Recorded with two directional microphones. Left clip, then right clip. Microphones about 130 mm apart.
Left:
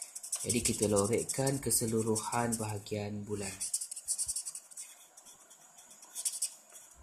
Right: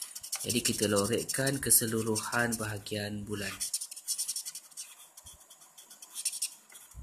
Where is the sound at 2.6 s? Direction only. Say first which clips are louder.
Right 2 dB; 15° left (ahead or behind).